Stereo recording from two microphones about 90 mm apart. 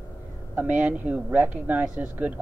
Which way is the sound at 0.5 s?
15° right (ahead or behind).